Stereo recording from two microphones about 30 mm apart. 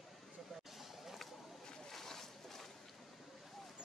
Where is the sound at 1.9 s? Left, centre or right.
Centre.